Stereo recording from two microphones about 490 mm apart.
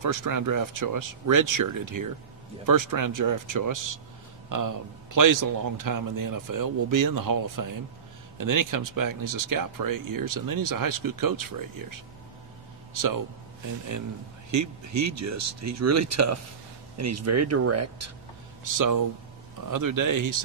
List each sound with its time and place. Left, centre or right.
0.0 s a man's voice: right
12.9 s speech: right
14.5 s a man's voice: right